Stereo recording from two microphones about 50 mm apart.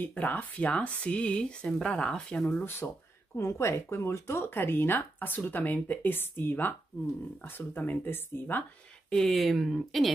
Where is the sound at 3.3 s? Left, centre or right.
Left.